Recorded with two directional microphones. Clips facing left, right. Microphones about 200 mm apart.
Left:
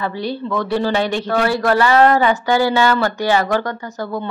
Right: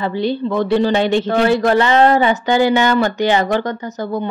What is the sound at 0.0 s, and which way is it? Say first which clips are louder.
A man's voice: right 4 dB; 25° right (ahead or behind).